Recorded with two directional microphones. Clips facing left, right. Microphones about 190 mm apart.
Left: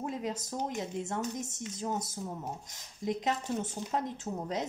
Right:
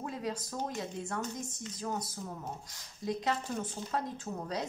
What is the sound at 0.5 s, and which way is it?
A woman's voice, 20° left (ahead or behind).